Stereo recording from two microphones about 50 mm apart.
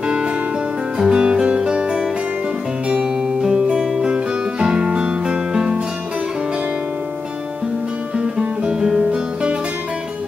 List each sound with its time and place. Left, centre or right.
0.9 s music: centre
3.4 s music: centre
8.2 s music: centre